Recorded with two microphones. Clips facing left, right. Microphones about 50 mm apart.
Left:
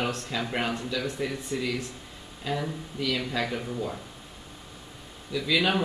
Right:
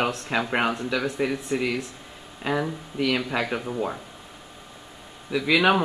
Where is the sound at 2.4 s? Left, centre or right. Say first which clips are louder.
Right 5 dB; right.